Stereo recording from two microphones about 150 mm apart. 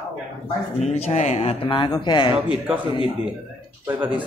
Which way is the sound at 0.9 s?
45° left (ahead or behind).